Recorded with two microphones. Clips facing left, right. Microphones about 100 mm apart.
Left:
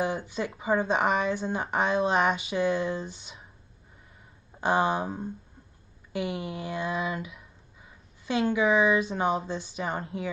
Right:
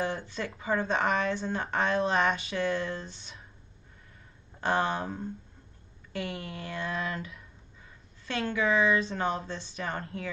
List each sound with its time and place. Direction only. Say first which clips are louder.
0.0 s speech: left 3 dB; 15° left (ahead or behind)
4.6 s speech: left 3 dB; 15° left (ahead or behind)